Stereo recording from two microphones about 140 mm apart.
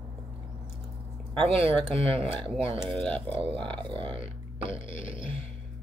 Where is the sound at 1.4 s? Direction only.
45° right (ahead or behind).